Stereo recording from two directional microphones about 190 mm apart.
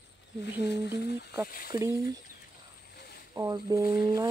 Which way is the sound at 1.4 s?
50° left (ahead or behind).